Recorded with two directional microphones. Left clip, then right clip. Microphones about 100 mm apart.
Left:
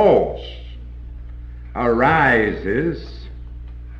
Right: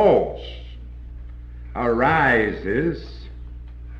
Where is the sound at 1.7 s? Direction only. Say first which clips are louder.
Left 3 dB; 50° left (ahead or behind).